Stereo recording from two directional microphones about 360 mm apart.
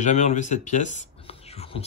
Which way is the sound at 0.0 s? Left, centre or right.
Centre.